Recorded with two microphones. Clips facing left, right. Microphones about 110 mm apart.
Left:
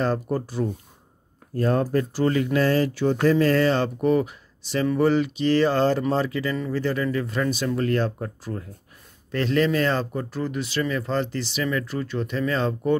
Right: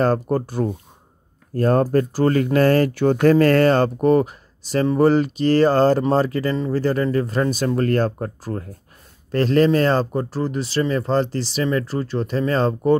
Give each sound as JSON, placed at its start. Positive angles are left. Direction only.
{"t": 0.0, "sound": "speech", "side_deg": -50}